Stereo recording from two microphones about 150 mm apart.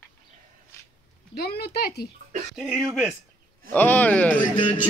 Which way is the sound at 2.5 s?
5° right (ahead or behind).